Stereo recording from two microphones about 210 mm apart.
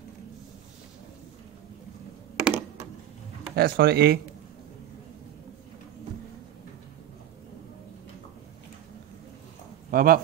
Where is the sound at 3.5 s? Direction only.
50° right (ahead or behind).